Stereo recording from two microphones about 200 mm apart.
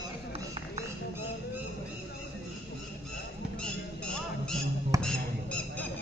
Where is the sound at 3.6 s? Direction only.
5° left (ahead or behind).